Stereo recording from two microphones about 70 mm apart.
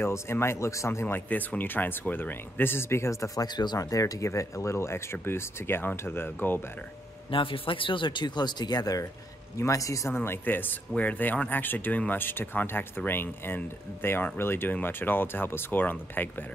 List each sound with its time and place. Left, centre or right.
0.0 s speech: left
1.0 s speech: left
3.4 s speech: left
8.1 s speech: left
10.1 s speech: left